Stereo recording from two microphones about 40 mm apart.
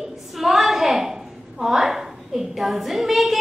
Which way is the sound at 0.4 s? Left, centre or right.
Centre.